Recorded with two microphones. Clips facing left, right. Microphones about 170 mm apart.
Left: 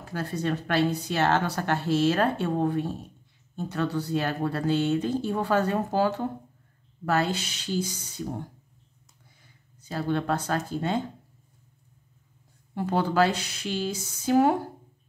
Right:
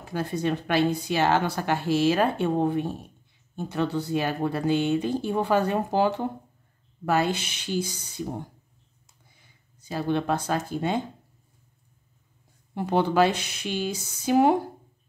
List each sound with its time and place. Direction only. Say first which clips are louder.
0.0 s a woman's voice: right 2 dB; 20° right (ahead or behind)
9.8 s a woman's voice: right 1 dB; 15° right (ahead or behind)
12.7 s speech: right 2 dB; 20° right (ahead or behind)